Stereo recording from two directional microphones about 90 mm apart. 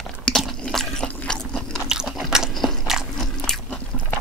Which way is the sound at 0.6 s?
10° left (ahead or behind).